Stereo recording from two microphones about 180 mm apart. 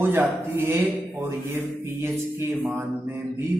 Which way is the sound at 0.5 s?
15° right (ahead or behind).